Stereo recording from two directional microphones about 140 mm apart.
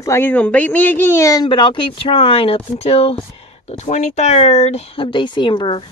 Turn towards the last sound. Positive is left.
turn(degrees=35)  # may be behind; listen again after turning